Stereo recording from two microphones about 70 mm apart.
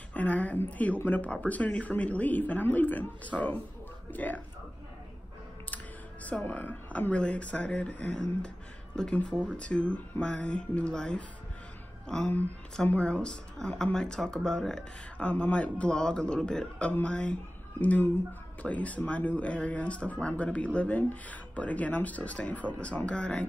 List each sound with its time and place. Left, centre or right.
0.1 s a woman's voice: left
6.2 s speech: left
9.3 s speech: centre
9.6 s speech: centre
17.7 s speech: left